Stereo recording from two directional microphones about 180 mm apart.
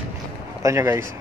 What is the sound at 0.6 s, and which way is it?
Speech, 15° right (ahead or behind).